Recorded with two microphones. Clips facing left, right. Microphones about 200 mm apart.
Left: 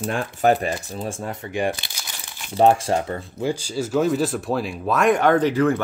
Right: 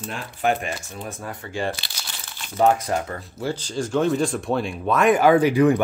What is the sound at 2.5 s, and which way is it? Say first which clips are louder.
Speech: left 2 dB; 30° left (ahead or behind).